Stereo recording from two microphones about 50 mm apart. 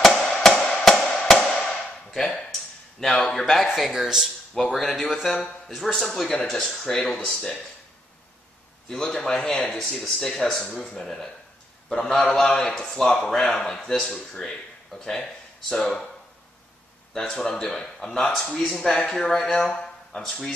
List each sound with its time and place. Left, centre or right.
0.0 s music: centre
1.5 s tap: centre
3.1 s speech: centre
4.6 s speech: centre
5.9 s speech: centre
6.1 s speech: centre
8.8 s speech: centre
17.1 s speech: centre